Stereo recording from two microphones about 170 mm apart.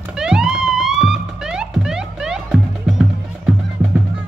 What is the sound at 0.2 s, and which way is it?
Music, 5° right (ahead or behind).